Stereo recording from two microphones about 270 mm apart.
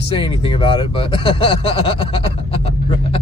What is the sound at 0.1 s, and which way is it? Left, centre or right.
Speech, centre.